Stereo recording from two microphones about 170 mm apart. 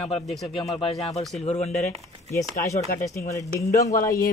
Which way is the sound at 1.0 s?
40° left (ahead or behind).